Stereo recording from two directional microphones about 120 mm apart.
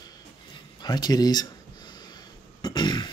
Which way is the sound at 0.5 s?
35° left (ahead or behind).